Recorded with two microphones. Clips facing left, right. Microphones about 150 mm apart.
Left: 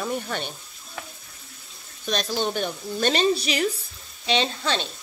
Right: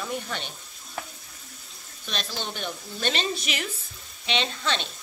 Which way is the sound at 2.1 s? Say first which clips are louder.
Left 8 dB; 45° left (ahead or behind).